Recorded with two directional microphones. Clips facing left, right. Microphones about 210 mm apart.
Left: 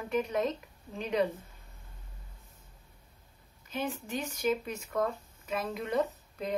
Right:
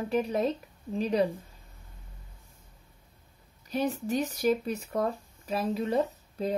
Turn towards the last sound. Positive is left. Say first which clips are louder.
# right 4 dB
turn(degrees=-30)  # may be behind; listen again after turning